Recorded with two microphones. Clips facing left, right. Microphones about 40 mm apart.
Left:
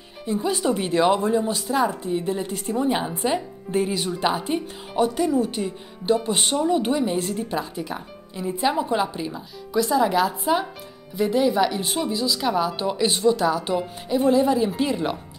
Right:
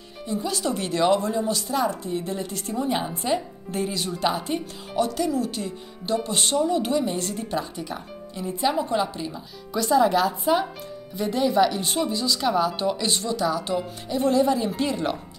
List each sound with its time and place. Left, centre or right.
0.3 s speech: left